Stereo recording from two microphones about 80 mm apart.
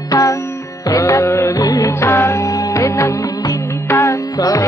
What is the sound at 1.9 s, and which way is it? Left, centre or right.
Music, left.